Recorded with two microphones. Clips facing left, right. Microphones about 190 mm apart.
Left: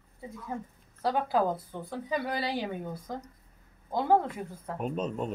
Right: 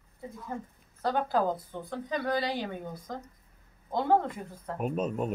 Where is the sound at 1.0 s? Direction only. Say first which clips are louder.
Left 1 dB; 5° left (ahead or behind).